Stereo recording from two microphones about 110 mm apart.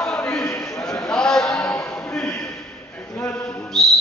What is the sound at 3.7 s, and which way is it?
Music, 5° left (ahead or behind).